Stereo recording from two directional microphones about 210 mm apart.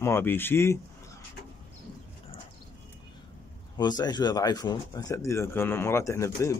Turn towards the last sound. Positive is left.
turn(degrees=15)  # may be behind; listen again after turning